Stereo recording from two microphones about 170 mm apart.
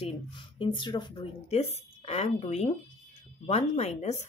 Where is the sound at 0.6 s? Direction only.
30° left (ahead or behind).